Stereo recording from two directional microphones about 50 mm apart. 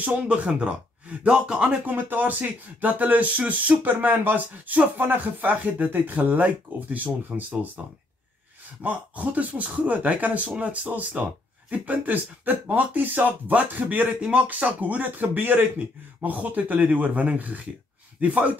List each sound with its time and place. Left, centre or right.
0.0 s a man's voice: right
1.9 s speech: right
3.8 s speech: right
8.8 s speech: right